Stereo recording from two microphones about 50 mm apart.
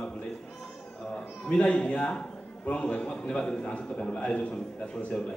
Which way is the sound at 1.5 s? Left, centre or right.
Left.